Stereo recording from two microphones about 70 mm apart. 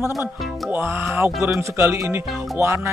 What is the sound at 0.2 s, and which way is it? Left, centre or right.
Speech, right.